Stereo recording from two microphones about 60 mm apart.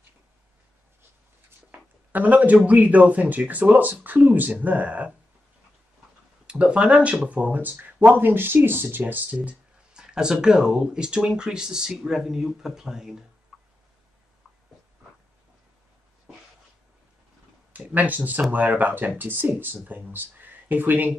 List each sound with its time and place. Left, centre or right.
1.7 s speech: right
6.4 s speech: centre
17.7 s speech: right